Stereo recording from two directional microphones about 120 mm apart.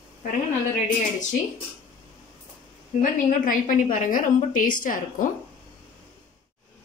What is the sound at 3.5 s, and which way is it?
A woman's voice, 90° left.